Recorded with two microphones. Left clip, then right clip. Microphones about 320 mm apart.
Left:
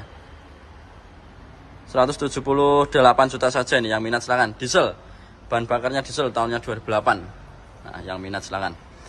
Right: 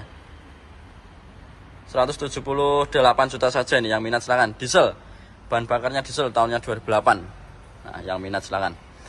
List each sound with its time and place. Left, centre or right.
1.9 s a man's voice: centre